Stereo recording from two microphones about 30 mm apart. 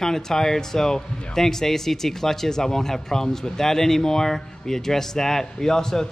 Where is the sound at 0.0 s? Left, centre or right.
Centre.